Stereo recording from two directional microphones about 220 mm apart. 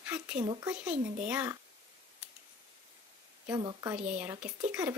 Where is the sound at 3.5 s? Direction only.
15° right (ahead or behind).